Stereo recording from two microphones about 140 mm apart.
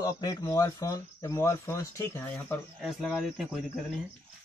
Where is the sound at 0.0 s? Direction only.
25° left (ahead or behind).